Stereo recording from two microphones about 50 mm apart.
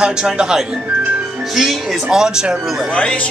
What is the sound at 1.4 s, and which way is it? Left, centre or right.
Speech, centre.